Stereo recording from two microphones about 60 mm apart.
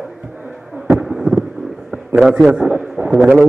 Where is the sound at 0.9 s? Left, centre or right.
Centre.